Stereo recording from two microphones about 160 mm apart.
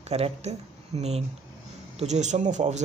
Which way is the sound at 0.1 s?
40° right (ahead or behind).